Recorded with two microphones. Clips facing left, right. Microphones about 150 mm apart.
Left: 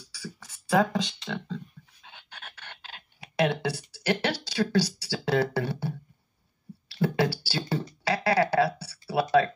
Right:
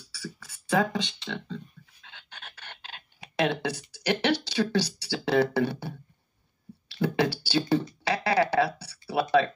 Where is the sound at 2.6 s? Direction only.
20° right (ahead or behind).